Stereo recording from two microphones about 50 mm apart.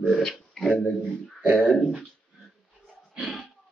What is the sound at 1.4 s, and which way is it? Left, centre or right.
Speech, right.